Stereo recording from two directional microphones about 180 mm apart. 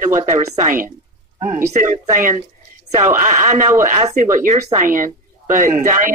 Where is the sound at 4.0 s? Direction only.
35° right (ahead or behind).